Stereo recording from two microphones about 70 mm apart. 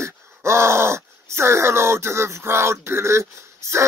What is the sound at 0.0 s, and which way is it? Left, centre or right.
Speech, right.